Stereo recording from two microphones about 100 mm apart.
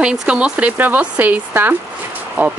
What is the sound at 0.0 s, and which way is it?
Speech, 10° right (ahead or behind).